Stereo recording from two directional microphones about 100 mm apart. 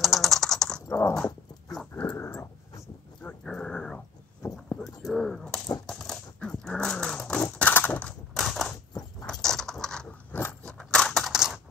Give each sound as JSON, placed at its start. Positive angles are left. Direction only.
{"t": 0.0, "sound": "typing", "side_deg": 0}
{"t": 0.8, "sound": "dog", "side_deg": 30}
{"t": 1.1, "sound": "dog", "side_deg": 5}
{"t": 2.0, "sound": "dog", "side_deg": 20}
{"t": 3.3, "sound": "dog", "side_deg": 10}
{"t": 4.4, "sound": "a sound", "side_deg": 35}
{"t": 4.7, "sound": "a sound", "side_deg": 5}
{"t": 5.9, "sound": "dog", "side_deg": 5}
{"t": 7.5, "sound": "crushing", "side_deg": 15}
{"t": 8.4, "sound": "crushing", "side_deg": 0}
{"t": 9.3, "sound": "keys jangling", "side_deg": 5}
{"t": 10.6, "sound": "crushing", "side_deg": 5}